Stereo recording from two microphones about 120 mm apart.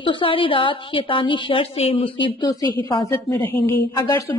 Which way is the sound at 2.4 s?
30° left (ahead or behind).